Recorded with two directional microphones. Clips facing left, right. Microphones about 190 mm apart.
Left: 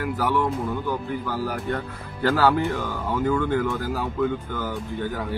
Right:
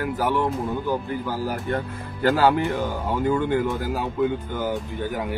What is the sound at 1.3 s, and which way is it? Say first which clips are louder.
Speech: right 1 dB; 15° right (ahead or behind).